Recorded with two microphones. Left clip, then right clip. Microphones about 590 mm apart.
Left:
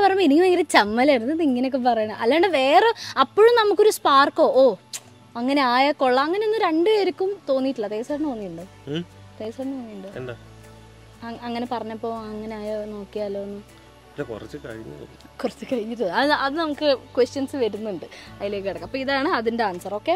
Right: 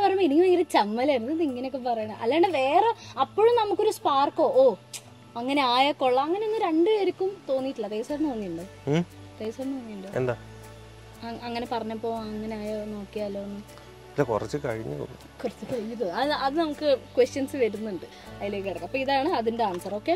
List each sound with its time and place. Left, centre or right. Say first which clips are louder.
0.0 s a woman's voice: left 4 dB; left
8.9 s speech: right 3 dB; centre
9.4 s a woman's voice: left 2 dB; left
10.1 s speech: right 8 dB; right
11.2 s a woman's voice: left 3 dB; left
14.1 s speech: right 6 dB; right
15.4 s a woman's voice: left 5 dB; left
16.1 s a woman's voice: left 6 dB; left
18.4 s a woman's voice: left 4 dB; left